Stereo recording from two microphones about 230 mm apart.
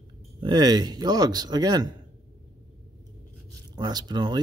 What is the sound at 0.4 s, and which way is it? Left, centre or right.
Speech, centre.